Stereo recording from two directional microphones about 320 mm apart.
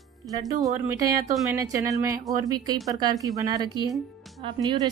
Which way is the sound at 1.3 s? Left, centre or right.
Centre.